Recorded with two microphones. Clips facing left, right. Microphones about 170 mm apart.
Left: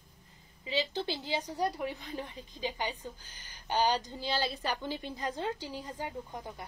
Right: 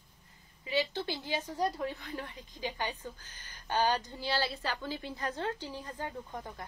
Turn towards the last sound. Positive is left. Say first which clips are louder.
# left 1 dB
turn(degrees=15)  # may be behind; listen again after turning